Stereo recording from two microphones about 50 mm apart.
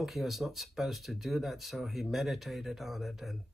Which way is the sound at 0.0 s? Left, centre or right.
Centre.